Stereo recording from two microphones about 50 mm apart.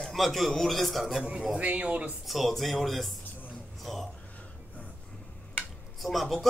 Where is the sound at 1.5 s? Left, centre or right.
Right.